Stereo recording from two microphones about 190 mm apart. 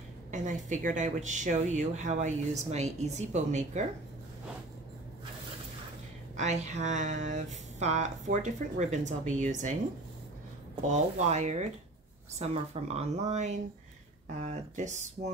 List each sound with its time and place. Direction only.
0.3 s speech: 40° right (ahead or behind)
6.3 s speech: 40° right (ahead or behind)
10.9 s speech: 40° right (ahead or behind)